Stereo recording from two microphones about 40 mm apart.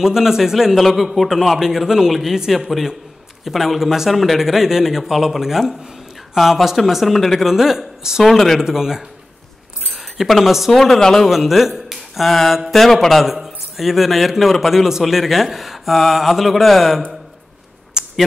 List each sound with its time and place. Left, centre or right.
0.0 s a man's voice: centre
8.2 s speech: centre
8.5 s a man's voice: centre
9.8 s chink: centre
10.7 s a man's voice: centre
11.2 s speech: centre
13.2 s a man's voice: centre
17.9 s a sound: centre